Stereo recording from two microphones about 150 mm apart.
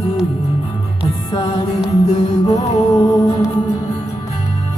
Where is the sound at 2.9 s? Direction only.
25° left (ahead or behind).